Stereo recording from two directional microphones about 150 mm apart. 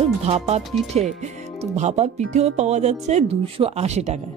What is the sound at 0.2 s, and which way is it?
Speech, 45° right (ahead or behind).